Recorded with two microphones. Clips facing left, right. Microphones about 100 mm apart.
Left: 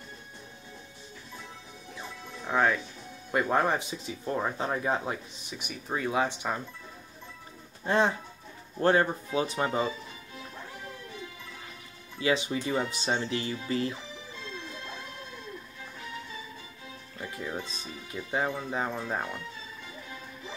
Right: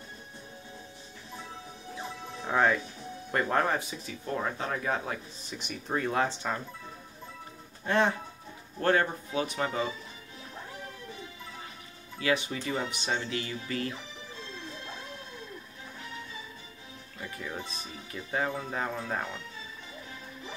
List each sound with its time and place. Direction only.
2.4 s speech: centre (ahead or behind)
7.8 s speech: 25° left (ahead or behind)
12.2 s speech: 20° left (ahead or behind)
17.2 s speech: 15° left (ahead or behind)